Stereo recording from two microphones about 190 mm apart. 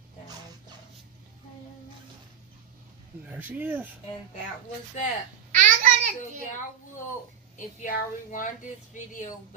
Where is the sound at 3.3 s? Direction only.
10° right (ahead or behind).